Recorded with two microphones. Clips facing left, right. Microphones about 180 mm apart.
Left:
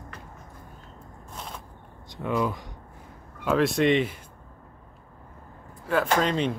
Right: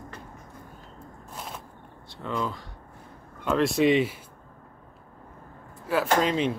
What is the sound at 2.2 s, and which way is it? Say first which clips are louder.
Speech: left 4 dB; 15° left (ahead or behind).